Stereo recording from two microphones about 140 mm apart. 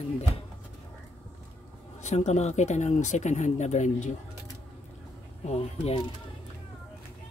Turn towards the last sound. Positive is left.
turn(degrees=50)  # may be behind; listen again after turning